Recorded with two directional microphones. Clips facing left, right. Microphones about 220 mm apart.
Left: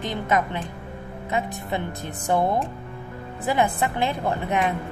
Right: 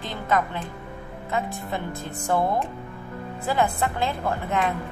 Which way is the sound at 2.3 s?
20° left (ahead or behind).